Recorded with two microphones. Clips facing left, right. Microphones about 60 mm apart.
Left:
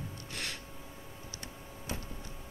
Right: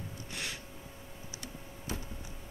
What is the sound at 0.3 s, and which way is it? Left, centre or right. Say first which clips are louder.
Gasp: even; centre.